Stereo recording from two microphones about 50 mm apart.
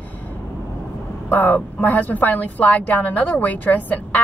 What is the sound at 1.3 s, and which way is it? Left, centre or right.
A woman's voice, left.